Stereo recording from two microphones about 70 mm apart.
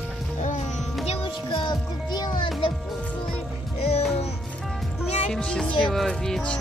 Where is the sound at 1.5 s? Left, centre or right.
Left.